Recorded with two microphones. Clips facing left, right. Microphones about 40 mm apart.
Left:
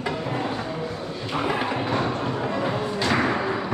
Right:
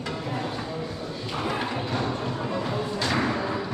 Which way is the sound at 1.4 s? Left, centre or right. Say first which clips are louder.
Left 4 dB; centre.